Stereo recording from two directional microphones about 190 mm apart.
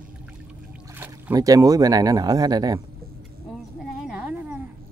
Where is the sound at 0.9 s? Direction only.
10° right (ahead or behind).